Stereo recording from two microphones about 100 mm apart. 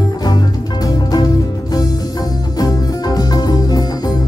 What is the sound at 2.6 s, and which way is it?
Music, 35° left (ahead or behind).